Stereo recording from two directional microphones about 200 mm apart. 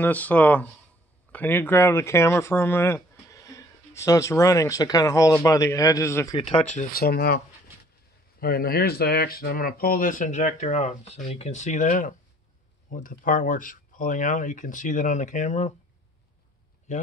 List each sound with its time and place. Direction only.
0.0 s speech: 10° left (ahead or behind)
6.3 s speech: 25° left (ahead or behind)
6.8 s speech: 50° left (ahead or behind)